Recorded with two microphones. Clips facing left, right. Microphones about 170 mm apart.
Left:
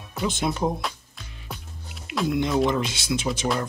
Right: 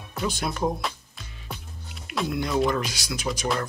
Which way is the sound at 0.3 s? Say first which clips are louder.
Left 4 dB; 20° left (ahead or behind).